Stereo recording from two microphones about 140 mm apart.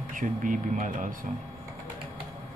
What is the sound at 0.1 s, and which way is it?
Speech, 70° right (ahead or behind).